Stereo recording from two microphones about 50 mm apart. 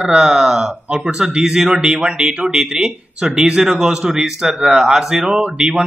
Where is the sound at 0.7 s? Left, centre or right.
Right.